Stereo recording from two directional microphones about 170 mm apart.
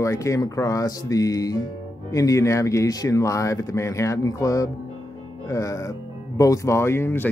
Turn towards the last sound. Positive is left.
turn(degrees=15)  # may be behind; listen again after turning